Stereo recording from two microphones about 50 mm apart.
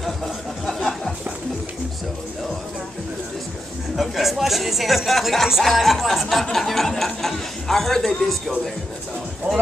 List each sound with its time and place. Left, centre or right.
0.7 s a sound: centre
3.9 s speech: centre
9.5 s speech: right